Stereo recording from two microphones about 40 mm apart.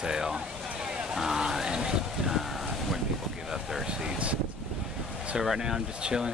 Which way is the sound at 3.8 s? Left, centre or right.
Right.